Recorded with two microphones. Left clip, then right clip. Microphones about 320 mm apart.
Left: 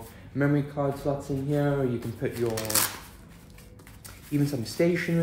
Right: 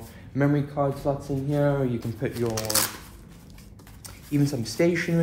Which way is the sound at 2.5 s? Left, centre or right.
Centre.